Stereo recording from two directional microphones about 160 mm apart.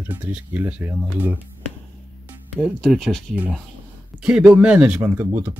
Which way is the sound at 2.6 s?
Centre (ahead or behind).